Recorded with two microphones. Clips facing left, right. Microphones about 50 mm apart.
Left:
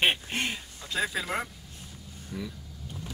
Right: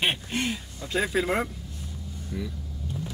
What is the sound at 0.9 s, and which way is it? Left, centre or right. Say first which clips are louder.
Speech: right 5 dB; centre.